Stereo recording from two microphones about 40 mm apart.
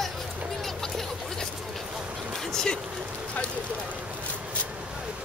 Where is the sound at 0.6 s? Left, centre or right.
Centre.